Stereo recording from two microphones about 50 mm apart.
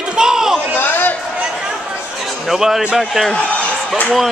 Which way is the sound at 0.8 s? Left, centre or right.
Left.